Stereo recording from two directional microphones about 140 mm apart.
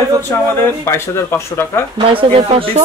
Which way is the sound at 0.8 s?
20° left (ahead or behind).